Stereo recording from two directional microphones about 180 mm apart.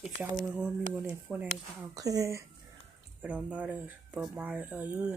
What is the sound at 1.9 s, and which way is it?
Speech, 20° right (ahead or behind).